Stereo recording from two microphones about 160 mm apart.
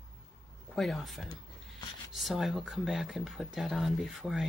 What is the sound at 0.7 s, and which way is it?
Speech, centre (ahead or behind).